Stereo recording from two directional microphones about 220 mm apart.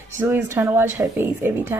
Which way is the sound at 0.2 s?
10° right (ahead or behind).